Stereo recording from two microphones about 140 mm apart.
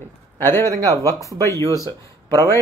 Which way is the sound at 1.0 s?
20° left (ahead or behind).